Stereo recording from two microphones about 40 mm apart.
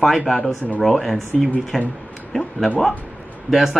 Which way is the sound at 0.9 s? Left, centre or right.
Centre.